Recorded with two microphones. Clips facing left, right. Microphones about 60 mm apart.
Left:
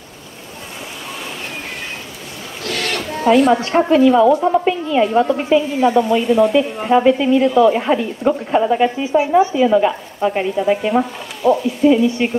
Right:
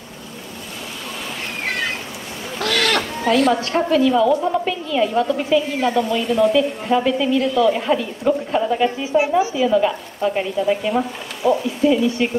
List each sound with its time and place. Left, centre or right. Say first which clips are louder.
2.6 s chicken: right 4 dB; right
3.6 s a woman's voice: left 5 dB; left
6.2 s speech: left 3 dB; centre
6.9 s a woman's voice: left 8 dB; left
7.4 s speech: left 5 dB; left
7.7 s a woman's voice: left 3 dB; left